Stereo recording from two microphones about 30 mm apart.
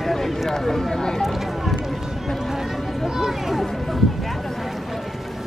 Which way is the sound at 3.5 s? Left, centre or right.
Centre.